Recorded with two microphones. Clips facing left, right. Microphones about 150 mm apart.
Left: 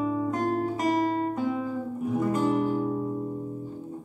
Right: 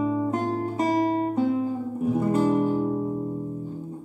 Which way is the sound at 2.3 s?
35° right (ahead or behind).